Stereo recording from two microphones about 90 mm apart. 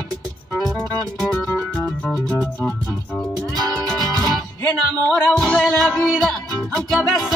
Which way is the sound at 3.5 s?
45° right (ahead or behind).